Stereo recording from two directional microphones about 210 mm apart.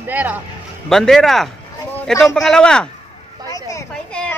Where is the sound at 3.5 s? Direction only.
15° left (ahead or behind).